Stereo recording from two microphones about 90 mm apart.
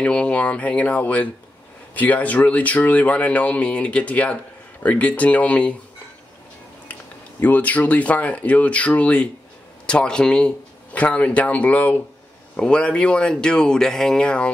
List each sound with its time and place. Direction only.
0.0 s speech: 10° left (ahead or behind)
6.9 s speech: 20° left (ahead or behind)